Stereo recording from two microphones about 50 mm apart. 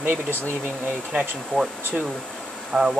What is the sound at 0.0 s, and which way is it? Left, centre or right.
Speech, right.